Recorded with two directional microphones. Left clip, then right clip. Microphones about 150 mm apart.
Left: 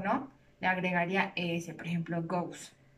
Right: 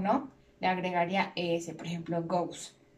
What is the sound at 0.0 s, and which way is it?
A woman's voice, 25° right (ahead or behind).